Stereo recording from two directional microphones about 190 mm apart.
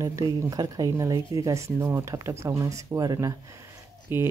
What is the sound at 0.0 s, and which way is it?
Speech, 15° right (ahead or behind).